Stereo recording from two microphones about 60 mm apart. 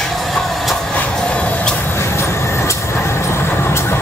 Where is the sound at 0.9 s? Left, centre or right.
Left.